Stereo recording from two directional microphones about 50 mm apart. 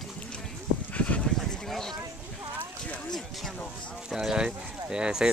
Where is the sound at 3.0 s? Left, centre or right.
Centre.